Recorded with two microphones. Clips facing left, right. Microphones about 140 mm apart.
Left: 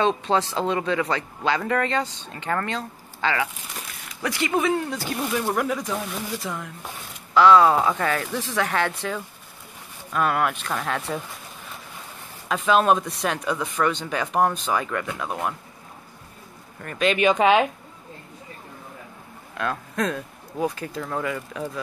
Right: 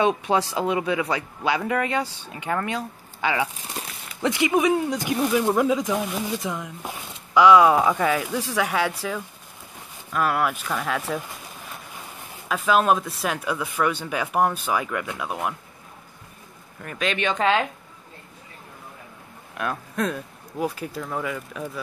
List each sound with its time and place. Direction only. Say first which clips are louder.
0.0 s a man's voice: even; 10° right (ahead or behind)
12.4 s a man's voice: left 1 dB; 5° right (ahead or behind)
16.8 s speech: left 5 dB; centre (ahead or behind)
19.5 s speech: left 1 dB; 10° right (ahead or behind)